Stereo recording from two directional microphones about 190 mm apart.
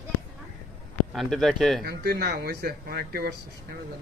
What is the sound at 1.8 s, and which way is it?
Speech, 55° right (ahead or behind).